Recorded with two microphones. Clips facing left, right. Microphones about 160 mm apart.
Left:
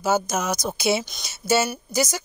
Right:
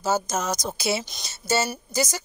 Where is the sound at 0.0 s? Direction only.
10° left (ahead or behind).